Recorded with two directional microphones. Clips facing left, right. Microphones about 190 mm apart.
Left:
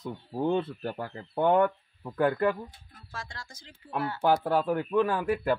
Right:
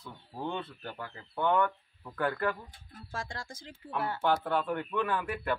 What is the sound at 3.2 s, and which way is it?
Speech, 50° right (ahead or behind).